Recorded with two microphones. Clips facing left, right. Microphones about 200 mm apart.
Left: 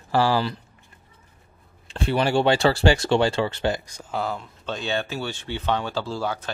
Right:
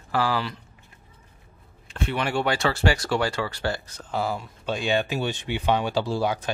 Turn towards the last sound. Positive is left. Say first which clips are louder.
# right 3 dB
turn(degrees=-15)  # may be behind; listen again after turning